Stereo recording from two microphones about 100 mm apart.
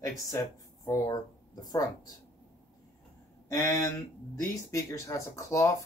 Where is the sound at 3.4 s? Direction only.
30° left (ahead or behind).